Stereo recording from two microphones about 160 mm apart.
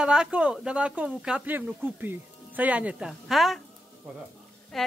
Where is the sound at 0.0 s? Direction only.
5° right (ahead or behind).